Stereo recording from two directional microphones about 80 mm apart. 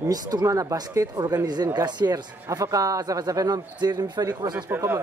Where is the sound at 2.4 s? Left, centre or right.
Right.